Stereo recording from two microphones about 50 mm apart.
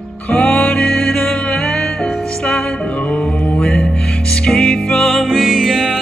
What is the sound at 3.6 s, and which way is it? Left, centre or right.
Music, centre.